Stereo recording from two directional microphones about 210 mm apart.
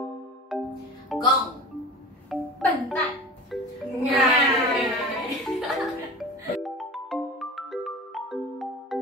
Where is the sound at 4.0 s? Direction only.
Centre (ahead or behind).